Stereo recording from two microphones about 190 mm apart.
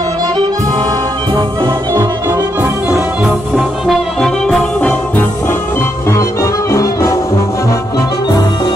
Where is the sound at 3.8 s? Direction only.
Centre (ahead or behind).